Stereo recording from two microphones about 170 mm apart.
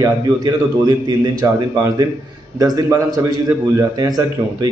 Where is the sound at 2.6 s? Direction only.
20° right (ahead or behind).